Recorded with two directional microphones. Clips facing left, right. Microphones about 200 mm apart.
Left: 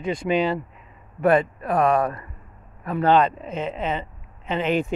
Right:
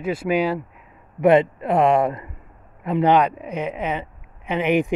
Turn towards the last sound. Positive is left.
turn(degrees=-15)  # may be behind; listen again after turning